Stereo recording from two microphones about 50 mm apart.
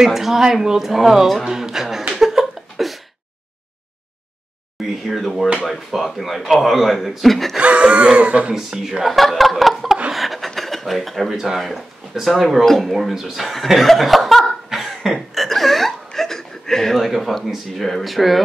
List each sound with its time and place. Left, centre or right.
0.0 s speech: centre
2.1 s a sound: centre
5.0 s speech: centre
7.5 s speech: right
8.5 s speech: centre
9.0 s speech: centre
15.1 s a sound: centre
16.1 s speech: centre